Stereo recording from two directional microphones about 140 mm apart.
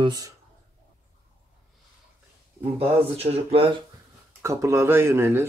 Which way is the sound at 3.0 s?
45° right (ahead or behind).